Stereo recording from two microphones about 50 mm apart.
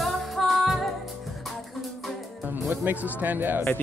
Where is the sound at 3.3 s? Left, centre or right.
Right.